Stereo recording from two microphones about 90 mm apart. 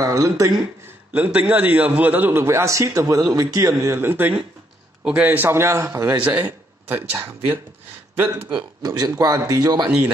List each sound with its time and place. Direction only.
0.0 s speech: 40° right (ahead or behind)
1.1 s a man's voice: 20° right (ahead or behind)
6.1 s a man's voice: 15° right (ahead or behind)
8.8 s speech: 45° right (ahead or behind)